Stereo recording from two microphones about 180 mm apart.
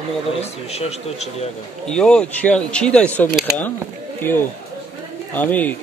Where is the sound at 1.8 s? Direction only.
5° left (ahead or behind).